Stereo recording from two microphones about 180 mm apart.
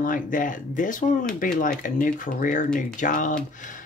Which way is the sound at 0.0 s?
50° left (ahead or behind).